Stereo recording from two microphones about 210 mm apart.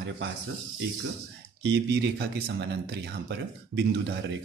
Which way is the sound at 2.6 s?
50° right (ahead or behind).